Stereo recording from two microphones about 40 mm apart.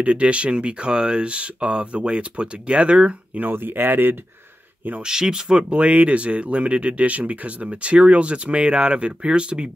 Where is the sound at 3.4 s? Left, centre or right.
Right.